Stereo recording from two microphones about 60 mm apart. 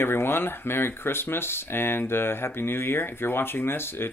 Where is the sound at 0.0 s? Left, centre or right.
Left.